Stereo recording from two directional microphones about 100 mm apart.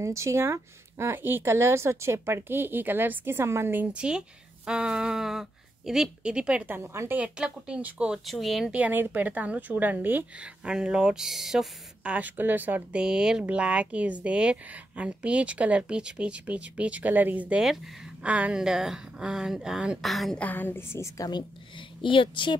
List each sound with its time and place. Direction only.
0.0 s a woman's voice: 30° right (ahead or behind); by 6.8 s 15° right (ahead or behind)
6.8 s speech: 25° right (ahead or behind)
7.2 s a woman's voice: 10° right (ahead or behind)
8.3 s speech: centre (ahead or behind)
8.7 s a woman's voice: 15° right (ahead or behind)
20.3 s a woman's voice: 20° left (ahead or behind)
22.0 s a woman's voice: 55° left (ahead or behind)